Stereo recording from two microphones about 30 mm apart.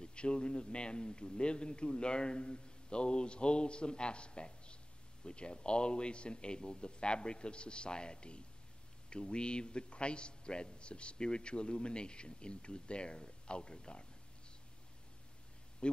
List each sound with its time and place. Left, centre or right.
0.0 s a man's voice: left
15.8 s speech: left